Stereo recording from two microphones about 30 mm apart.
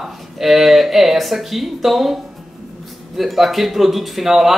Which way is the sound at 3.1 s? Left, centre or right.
Centre.